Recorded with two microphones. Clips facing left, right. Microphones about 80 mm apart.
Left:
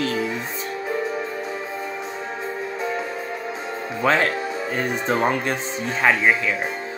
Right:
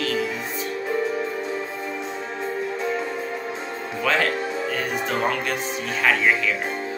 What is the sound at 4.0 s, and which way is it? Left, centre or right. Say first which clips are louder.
Speech: left 2 dB; left.